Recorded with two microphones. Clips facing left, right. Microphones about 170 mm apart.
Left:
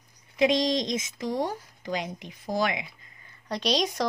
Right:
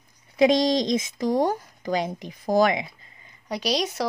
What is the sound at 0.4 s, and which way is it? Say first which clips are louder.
Speech: right 4 dB; 40° right (ahead or behind).